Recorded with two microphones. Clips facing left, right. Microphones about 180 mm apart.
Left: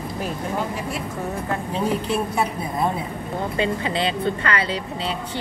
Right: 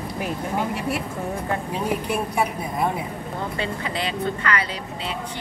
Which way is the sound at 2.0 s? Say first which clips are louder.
Left 1 dB; 10° right (ahead or behind).